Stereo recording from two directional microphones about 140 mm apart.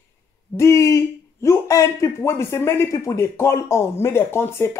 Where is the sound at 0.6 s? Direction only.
20° left (ahead or behind).